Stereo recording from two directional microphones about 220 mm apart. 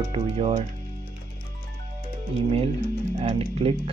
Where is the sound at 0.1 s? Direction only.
25° right (ahead or behind).